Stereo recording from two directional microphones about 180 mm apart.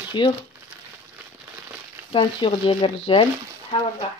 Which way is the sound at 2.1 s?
30° left (ahead or behind).